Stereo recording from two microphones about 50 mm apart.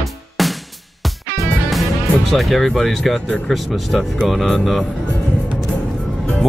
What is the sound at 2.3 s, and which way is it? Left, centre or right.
Speech, centre.